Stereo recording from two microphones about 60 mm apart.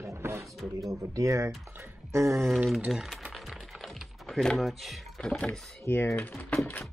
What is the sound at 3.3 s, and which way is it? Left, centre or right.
Typing, centre.